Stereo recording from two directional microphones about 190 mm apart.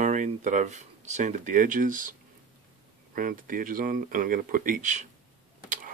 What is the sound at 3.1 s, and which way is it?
Speech, 45° right (ahead or behind).